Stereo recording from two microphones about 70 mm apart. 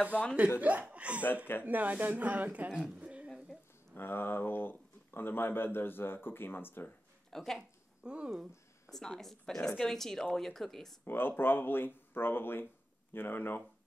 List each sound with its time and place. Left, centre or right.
0.6 s speech: right
2.7 s speech: centre
3.9 s speech: left
7.2 s speech: centre
7.5 s speech: centre
8.3 s a sound: centre
8.9 s speech: centre
11.1 s speech: left